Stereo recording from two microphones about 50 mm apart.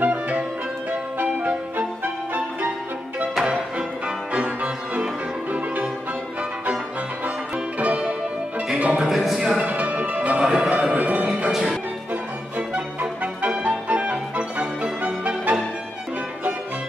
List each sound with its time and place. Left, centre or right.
0.0 s music: right
4.3 s music: right
7.2 s music: right
9.0 s a sound: centre
9.7 s music: right
10.4 s music: centre
10.7 s music: right